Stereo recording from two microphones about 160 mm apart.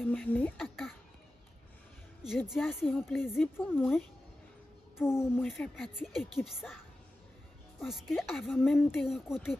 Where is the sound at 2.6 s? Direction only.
10° left (ahead or behind).